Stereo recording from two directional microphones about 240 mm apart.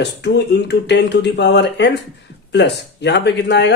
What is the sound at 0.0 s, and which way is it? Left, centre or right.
Speech, left.